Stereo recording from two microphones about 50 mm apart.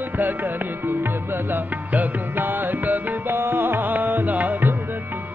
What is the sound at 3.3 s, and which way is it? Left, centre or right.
Music, right.